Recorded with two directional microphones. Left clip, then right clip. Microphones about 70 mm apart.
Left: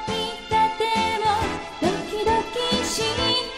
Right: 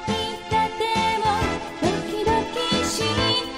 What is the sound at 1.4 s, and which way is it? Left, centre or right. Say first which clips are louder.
Music: right 1 dB; left.